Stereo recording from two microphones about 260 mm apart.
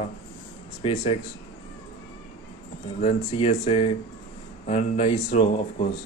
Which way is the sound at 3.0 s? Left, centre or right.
Left.